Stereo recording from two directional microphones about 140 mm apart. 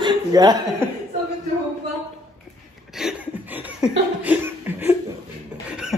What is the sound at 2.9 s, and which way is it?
Laughter, 5° right (ahead or behind).